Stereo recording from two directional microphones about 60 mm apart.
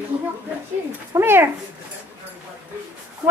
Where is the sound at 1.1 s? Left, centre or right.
Right.